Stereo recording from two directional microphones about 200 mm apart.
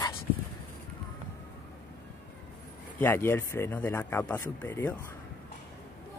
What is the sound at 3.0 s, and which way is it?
Speech, 10° left (ahead or behind).